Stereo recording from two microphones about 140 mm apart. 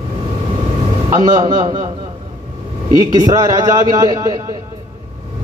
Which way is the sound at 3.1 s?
25° right (ahead or behind).